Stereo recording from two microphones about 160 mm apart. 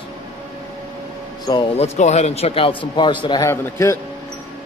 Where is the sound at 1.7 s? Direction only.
45° left (ahead or behind); by 3.5 s 25° left (ahead or behind).